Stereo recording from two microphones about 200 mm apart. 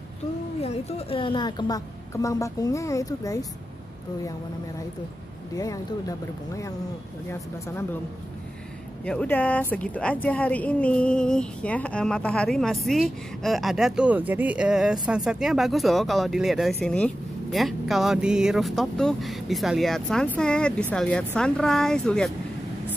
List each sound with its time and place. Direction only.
0.6 s a woman's voice: 30° left (ahead or behind)
5.6 s speech: 15° left (ahead or behind)
9.0 s a woman's voice: 5° left (ahead or behind)